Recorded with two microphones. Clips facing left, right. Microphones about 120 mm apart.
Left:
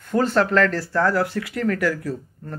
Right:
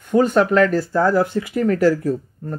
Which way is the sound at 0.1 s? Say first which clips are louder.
Right 4 dB; 15° right (ahead or behind).